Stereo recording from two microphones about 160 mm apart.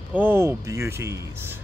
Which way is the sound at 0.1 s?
10° right (ahead or behind).